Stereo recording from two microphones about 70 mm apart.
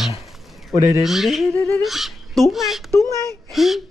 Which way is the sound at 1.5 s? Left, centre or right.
Left.